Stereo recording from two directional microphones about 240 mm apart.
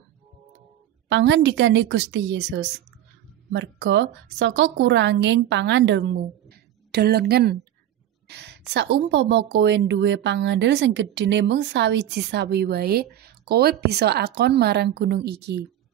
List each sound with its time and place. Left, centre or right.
1.0 s a woman's voice: right